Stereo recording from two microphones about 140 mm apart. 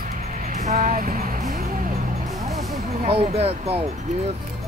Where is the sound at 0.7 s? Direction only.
85° right.